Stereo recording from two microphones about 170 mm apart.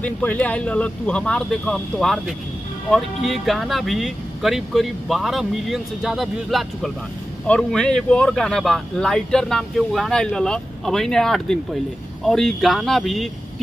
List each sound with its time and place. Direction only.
0.0 s speech: 10° left (ahead or behind)